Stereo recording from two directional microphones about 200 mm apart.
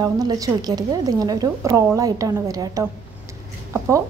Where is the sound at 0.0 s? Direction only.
20° right (ahead or behind).